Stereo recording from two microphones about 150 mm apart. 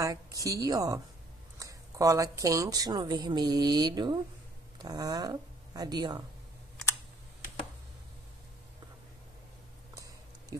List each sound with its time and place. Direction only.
0.0 s speech: 25° right (ahead or behind)